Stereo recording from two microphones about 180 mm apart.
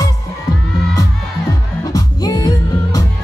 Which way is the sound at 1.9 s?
20° left (ahead or behind).